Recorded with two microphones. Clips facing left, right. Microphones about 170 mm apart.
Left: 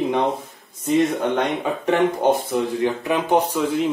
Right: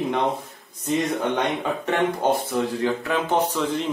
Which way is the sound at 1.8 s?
15° left (ahead or behind).